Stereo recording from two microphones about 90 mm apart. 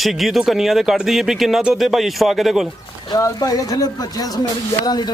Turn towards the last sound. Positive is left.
turn(degrees=50)  # may be behind; listen again after turning